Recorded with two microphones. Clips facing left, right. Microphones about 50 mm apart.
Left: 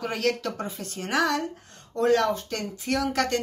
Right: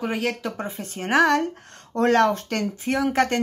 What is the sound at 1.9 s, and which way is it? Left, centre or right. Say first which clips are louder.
Speech: right 3 dB; right.